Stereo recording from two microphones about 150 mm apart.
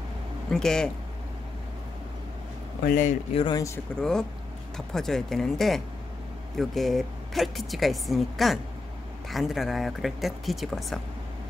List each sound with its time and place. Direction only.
0.5 s a woman's voice: 5° left (ahead or behind)
2.9 s speech: 60° left (ahead or behind)
3.3 s speech: 30° left (ahead or behind)
4.0 s a woman's voice: 5° left (ahead or behind)